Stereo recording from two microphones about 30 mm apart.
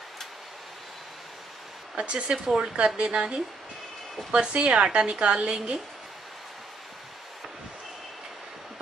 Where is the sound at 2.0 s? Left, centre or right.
Right.